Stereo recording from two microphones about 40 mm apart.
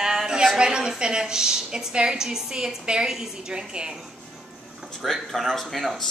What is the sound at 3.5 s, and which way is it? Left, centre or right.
Speech, right.